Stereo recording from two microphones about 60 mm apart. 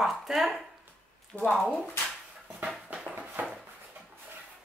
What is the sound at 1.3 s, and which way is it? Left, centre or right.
Speech, left.